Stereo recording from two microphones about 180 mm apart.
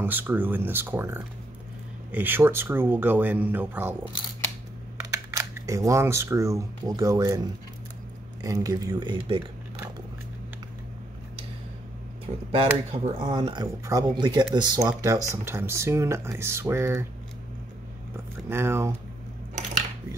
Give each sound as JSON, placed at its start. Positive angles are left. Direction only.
{"t": 0.0, "sound": "speech", "side_deg": -10}
{"t": 5.3, "sound": "speech", "side_deg": -20}
{"t": 12.4, "sound": "speech", "side_deg": -35}
{"t": 18.1, "sound": "a sound", "side_deg": -15}